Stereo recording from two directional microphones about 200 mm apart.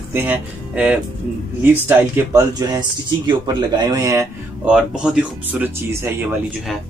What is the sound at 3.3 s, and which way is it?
Speech, 20° right (ahead or behind).